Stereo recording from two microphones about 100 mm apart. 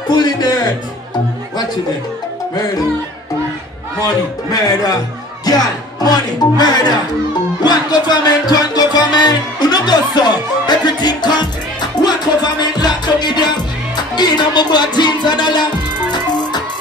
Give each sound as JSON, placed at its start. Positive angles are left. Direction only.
{"t": 0.1, "sound": "music", "side_deg": 40}
{"t": 4.0, "sound": "speech", "side_deg": 40}
{"t": 7.6, "sound": "music", "side_deg": 45}
{"t": 12.7, "sound": "music", "side_deg": 45}